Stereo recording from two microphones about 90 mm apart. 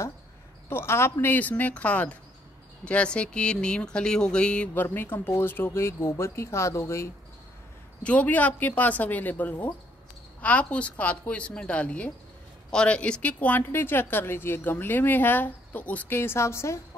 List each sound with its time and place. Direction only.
0.7 s speech: 25° left (ahead or behind)
4.8 s speech: 25° left (ahead or behind)
8.0 s speech: 15° left (ahead or behind); by 16.8 s 30° left (ahead or behind)